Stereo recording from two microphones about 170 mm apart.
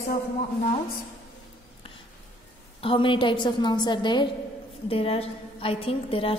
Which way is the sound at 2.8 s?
30° left (ahead or behind).